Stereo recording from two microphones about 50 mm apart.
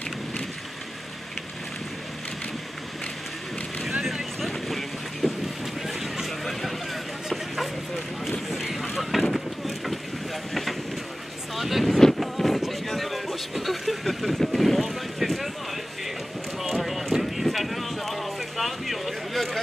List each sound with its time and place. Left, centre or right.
4.0 s vehicle: centre
8.3 s a sound: centre
10.5 s vehicle: centre
11.5 s wind noise: centre
16.6 s clip-clop: centre